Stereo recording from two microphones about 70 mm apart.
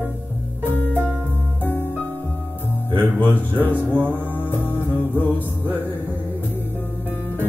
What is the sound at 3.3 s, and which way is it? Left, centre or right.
Speech, left.